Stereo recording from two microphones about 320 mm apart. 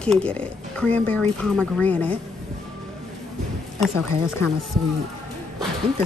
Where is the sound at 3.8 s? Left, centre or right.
Centre.